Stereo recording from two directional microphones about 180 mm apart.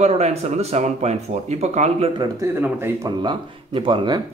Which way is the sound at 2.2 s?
15° right (ahead or behind).